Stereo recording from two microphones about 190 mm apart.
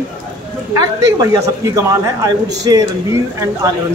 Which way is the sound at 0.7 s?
20° right (ahead or behind).